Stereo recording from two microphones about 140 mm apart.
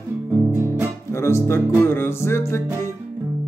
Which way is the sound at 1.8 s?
15° left (ahead or behind).